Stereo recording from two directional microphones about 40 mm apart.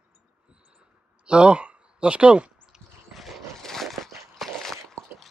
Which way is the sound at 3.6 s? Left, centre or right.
Centre.